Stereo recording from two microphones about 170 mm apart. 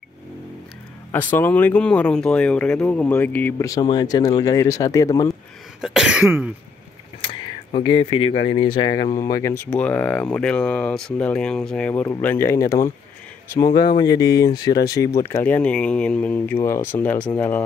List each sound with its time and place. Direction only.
1.1 s speech: 10° left (ahead or behind)
5.8 s cough: 5° right (ahead or behind)
7.2 s speech: 30° left (ahead or behind); by 17.6 s 10° left (ahead or behind)